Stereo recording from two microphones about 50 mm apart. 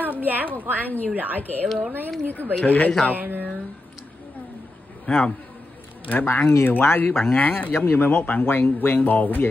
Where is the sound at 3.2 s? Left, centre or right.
Right.